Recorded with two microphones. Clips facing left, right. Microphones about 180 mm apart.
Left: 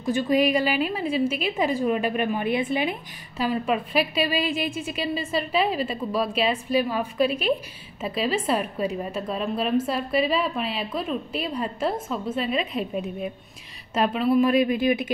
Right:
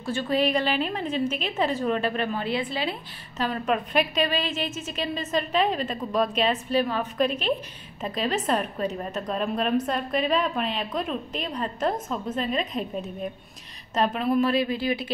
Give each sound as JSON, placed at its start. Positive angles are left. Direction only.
{"t": 0.0, "sound": "a woman's voice", "side_deg": 15}
{"t": 14.4, "sound": "a woman's voice", "side_deg": 15}